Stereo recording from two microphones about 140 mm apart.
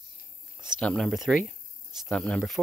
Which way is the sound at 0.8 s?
5° left (ahead or behind).